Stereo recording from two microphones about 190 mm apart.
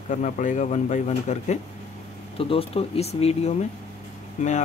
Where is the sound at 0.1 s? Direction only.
40° left (ahead or behind).